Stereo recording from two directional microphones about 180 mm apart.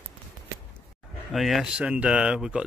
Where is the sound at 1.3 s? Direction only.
Centre (ahead or behind).